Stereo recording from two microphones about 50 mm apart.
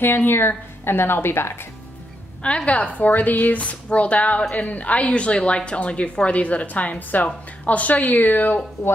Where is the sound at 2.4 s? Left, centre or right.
Left.